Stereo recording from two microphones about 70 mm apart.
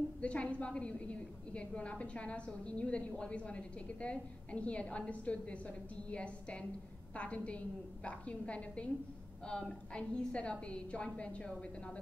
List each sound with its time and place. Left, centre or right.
0.2 s a woman's voice: centre